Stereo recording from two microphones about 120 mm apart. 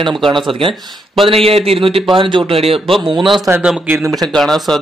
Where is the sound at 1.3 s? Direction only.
55° right (ahead or behind).